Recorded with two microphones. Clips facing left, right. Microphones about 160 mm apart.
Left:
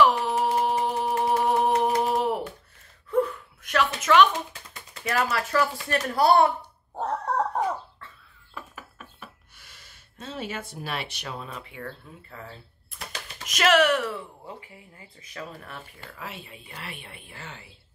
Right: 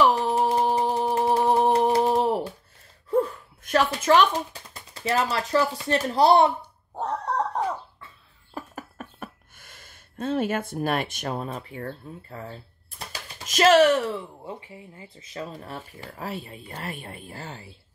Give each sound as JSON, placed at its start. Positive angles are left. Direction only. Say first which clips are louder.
{"t": 0.0, "sound": "a sound", "louder": "right 1 dB", "side_deg": -30}
{"t": 3.1, "sound": "gasp", "louder": "right 1 dB", "side_deg": -30}
{"t": 4.9, "sound": "speech", "louder": "right 2 dB", "side_deg": -30}
{"t": 7.0, "sound": "chicken", "louder": "even", "side_deg": 5}
{"t": 8.5, "sound": "a sound", "louder": "right 6 dB", "side_deg": -45}
{"t": 13.5, "sound": "speech", "louder": "right 4 dB", "side_deg": -30}